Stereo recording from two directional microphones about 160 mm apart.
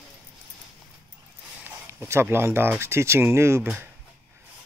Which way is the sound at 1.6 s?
15° right (ahead or behind).